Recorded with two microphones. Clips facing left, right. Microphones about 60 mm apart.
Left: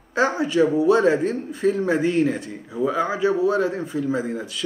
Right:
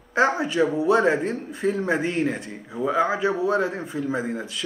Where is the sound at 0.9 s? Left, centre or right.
Centre.